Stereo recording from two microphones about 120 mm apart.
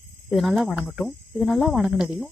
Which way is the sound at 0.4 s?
Centre (ahead or behind).